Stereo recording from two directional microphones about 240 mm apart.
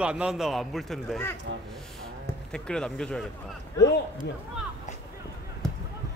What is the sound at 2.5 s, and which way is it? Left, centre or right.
Speech, centre.